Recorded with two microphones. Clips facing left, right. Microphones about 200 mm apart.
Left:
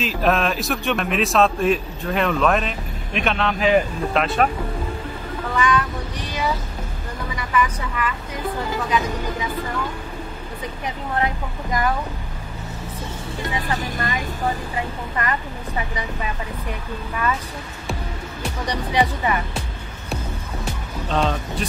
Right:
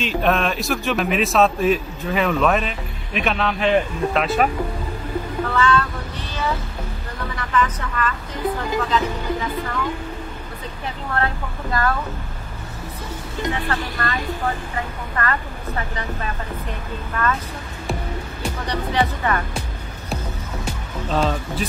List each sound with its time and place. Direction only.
0.0 s a man's voice: centre (ahead or behind)
5.5 s a sound: 15° left (ahead or behind)
7.3 s speech: 10° left (ahead or behind)
11.1 s speech: 15° left (ahead or behind)
13.5 s speech: 15° left (ahead or behind)
17.2 s speech: 10° left (ahead or behind)
18.7 s speech: 15° left (ahead or behind)
21.1 s a man's voice: centre (ahead or behind)